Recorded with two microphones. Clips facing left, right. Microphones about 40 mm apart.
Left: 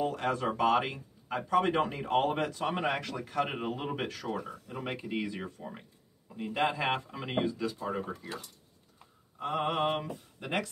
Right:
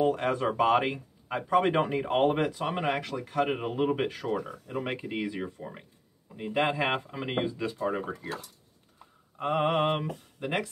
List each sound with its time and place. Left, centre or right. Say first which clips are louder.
0.0 s speech: right 4 dB; right; by 5.9 s centre
6.3 s a man's voice: right 3 dB; right
8.2 s mantra: right 4 dB; right
10.4 s speech: right 3 dB; centre